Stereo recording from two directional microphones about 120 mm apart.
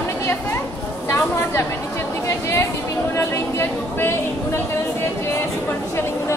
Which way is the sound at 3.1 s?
20° left (ahead or behind).